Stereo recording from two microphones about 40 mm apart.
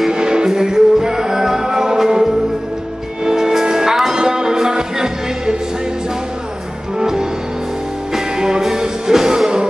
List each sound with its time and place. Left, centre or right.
0.1 s music: centre
7.0 s music: centre